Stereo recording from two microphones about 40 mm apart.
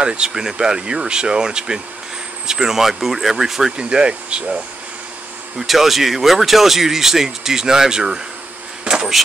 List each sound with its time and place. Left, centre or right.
0.0 s speech: right
3.7 s speech: right
5.6 s speech: centre
8.9 s a sound: right